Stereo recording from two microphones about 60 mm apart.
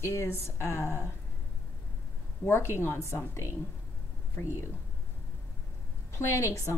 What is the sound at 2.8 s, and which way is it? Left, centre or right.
Speech, left.